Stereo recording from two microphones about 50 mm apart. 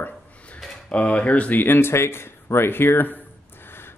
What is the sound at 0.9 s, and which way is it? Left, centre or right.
Speech, left.